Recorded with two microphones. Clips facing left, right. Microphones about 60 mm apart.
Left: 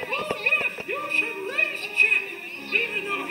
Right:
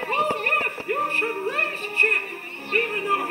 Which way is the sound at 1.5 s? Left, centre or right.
Right.